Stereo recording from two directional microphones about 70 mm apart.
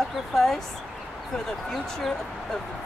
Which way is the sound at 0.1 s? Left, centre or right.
Centre.